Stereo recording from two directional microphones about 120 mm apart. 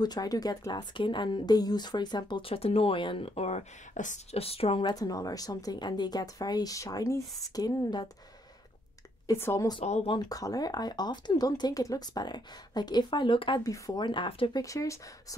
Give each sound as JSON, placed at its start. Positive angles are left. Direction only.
{"t": 0.0, "sound": "speech", "side_deg": 35}
{"t": 4.4, "sound": "a woman's voice", "side_deg": 55}
{"t": 4.8, "sound": "speech", "side_deg": 30}
{"t": 9.3, "sound": "speech", "side_deg": 25}
{"t": 10.0, "sound": "speech", "side_deg": 35}
{"t": 13.7, "sound": "speech", "side_deg": 35}
{"t": 14.6, "sound": "speech", "side_deg": 25}